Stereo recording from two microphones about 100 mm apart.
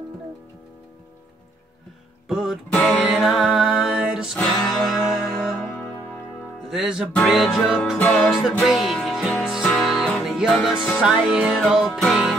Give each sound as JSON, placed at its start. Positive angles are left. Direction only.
{"t": 2.2, "sound": "music", "side_deg": -5}
{"t": 6.7, "sound": "music", "side_deg": -5}